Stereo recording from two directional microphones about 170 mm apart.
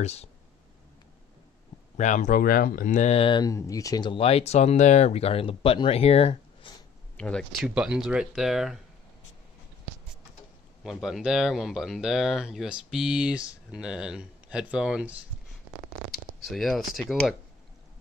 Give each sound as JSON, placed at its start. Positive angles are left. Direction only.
{"t": 0.0, "sound": "speech", "side_deg": 40}
{"t": 2.0, "sound": "speech", "side_deg": 45}
{"t": 7.2, "sound": "speech", "side_deg": 5}
{"t": 7.6, "sound": "speech", "side_deg": -5}
{"t": 10.8, "sound": "speech", "side_deg": 0}
{"t": 16.4, "sound": "speech", "side_deg": 0}